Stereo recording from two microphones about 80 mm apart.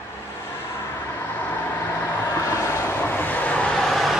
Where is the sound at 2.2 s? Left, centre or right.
Left.